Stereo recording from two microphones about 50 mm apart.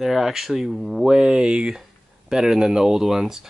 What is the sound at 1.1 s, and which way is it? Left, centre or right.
Speech, centre.